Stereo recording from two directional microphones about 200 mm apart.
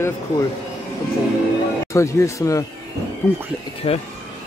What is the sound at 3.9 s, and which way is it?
Speech, 30° left (ahead or behind).